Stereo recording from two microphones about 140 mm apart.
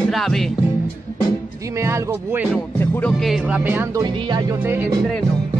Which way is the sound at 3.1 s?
Centre (ahead or behind).